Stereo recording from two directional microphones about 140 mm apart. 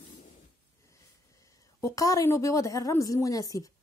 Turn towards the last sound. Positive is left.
turn(degrees=25)  # may be behind; listen again after turning